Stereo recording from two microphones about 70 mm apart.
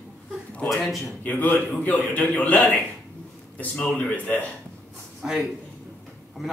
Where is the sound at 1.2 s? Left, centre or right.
Left.